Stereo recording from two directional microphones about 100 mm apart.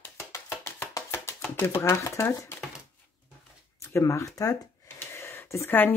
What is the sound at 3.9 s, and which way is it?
Speech, 25° left (ahead or behind).